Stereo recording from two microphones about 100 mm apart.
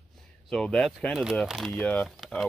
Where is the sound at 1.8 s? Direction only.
15° left (ahead or behind).